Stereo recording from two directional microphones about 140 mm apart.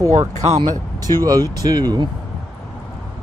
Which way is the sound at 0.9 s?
25° right (ahead or behind).